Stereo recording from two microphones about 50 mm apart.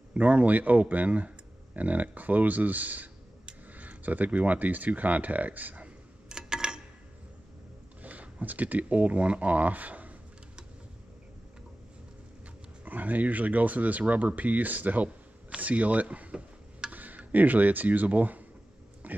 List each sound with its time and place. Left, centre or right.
0.1 s speech: right
6.2 s tick-tock: centre
8.0 s speech: right
12.8 s speech: right
15.5 s a sound: right
16.9 s speech: right
19.0 s pig: right